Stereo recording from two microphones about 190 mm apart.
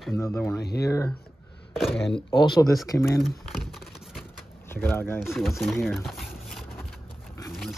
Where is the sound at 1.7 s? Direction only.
Centre (ahead or behind).